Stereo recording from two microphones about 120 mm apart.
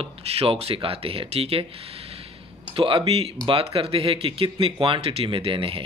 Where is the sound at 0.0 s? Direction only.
55° right (ahead or behind).